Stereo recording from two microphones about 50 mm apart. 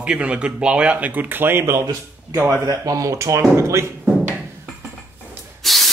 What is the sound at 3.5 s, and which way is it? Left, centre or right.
Speech, right.